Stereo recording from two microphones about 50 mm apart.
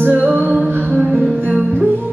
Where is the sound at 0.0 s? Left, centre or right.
Right.